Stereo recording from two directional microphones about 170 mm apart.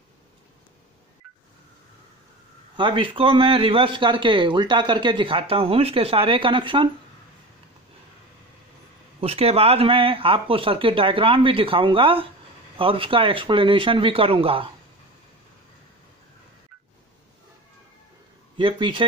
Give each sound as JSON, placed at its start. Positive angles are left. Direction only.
{"t": 2.7, "sound": "a man's voice", "side_deg": -30}
{"t": 9.2, "sound": "speech", "side_deg": -35}
{"t": 18.6, "sound": "a man's voice", "side_deg": -30}